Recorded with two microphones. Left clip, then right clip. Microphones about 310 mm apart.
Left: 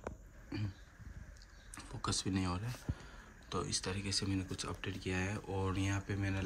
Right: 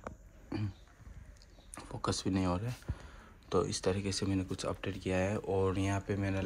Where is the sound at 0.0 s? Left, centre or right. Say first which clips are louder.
Even; centre.